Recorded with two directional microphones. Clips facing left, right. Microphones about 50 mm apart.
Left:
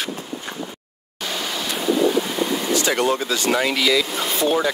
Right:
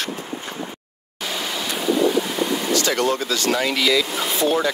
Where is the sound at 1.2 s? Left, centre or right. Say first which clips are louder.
Even; centre.